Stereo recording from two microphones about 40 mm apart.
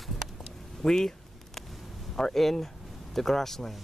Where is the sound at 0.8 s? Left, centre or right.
Centre.